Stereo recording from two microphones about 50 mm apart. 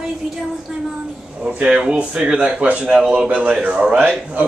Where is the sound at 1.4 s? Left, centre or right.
Right.